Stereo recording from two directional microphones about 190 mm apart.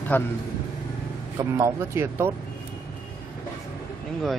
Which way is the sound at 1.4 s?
15° right (ahead or behind).